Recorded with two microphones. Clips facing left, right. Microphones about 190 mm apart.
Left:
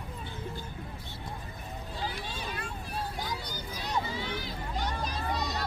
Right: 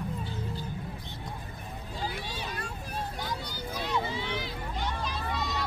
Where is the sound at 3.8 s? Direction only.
45° left (ahead or behind).